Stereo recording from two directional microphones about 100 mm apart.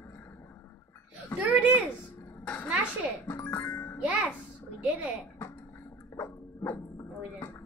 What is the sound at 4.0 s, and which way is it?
Speech, 15° right (ahead or behind).